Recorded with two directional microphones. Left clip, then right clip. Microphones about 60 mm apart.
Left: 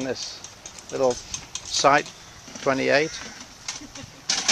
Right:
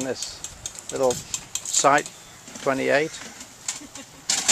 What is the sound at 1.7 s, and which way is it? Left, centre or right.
Speech, centre.